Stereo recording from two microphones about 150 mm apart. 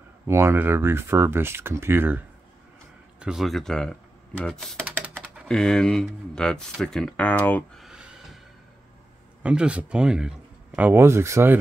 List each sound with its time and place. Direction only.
0.3 s speech: 15° right (ahead or behind); by 7.8 s 10° left (ahead or behind)
7.8 s a sound: 5° right (ahead or behind)
9.4 s a man's voice: 10° right (ahead or behind)
10.9 s speech: 15° right (ahead or behind)